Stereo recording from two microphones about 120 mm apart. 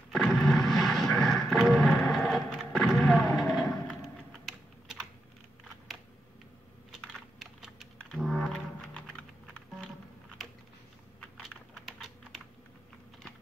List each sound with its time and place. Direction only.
0.1 s artillery fire: centre (ahead or behind)
4.0 s typing: centre (ahead or behind)
6.9 s computer keyboard: centre (ahead or behind)
11.4 s typing: centre (ahead or behind)